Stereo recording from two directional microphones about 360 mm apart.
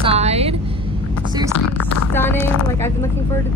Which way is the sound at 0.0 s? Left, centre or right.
Centre.